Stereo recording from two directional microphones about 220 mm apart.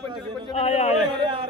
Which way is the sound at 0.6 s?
30° left (ahead or behind).